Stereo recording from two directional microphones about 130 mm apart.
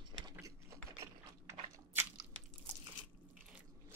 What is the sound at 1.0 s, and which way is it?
Biting, 20° right (ahead or behind).